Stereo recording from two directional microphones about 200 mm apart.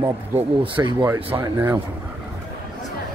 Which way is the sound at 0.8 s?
15° right (ahead or behind).